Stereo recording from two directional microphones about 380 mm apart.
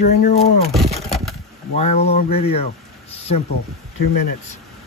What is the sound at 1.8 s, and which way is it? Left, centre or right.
Speech, centre.